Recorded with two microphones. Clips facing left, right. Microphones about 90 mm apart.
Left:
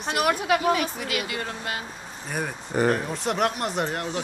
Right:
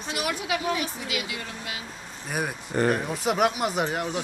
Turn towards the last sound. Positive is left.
turn(degrees=-5)  # may be behind; listen again after turning